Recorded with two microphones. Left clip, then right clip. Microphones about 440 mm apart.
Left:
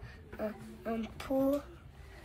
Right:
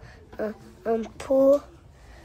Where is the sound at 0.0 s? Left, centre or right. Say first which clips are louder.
Right 8 dB; centre.